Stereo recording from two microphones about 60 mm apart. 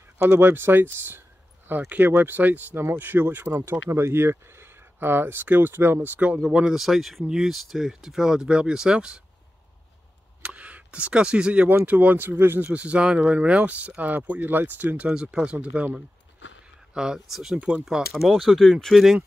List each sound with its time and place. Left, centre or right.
0.2 s speech: right
6.5 s speech: centre
10.4 s speech: right
12.6 s speech: centre
15.0 s speech: centre
17.6 s speech: right
18.1 s speech: centre